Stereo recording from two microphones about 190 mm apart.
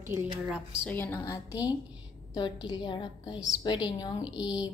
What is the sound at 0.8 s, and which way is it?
A woman's voice, 10° left (ahead or behind).